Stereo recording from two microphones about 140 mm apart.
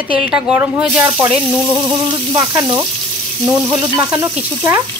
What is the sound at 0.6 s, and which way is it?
Speech, 20° right (ahead or behind).